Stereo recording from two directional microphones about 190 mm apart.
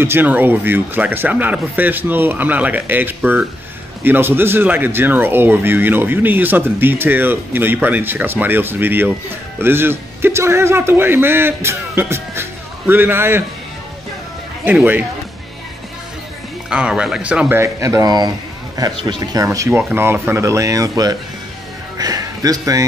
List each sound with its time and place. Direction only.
0.0 s speech: 10° right (ahead or behind)
14.6 s speech: 10° right (ahead or behind)
16.6 s speech: 5° right (ahead or behind)
21.9 s a sound: 20° right (ahead or behind)